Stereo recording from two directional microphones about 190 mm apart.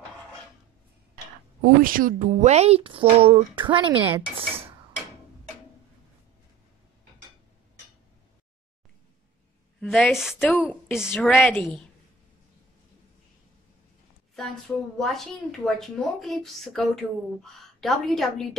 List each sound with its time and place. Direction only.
1.1 s speech: 50° right (ahead or behind); by 4.0 s 25° right (ahead or behind)
9.8 s a woman's voice: 5° left (ahead or behind)
15.0 s speech: centre (ahead or behind)